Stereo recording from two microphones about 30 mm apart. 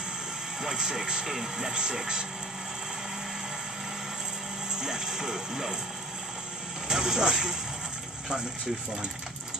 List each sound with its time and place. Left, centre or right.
0.6 s speech: centre
1.2 s speech: centre
1.7 s speech: right
4.7 s speech: centre
6.9 s speech: right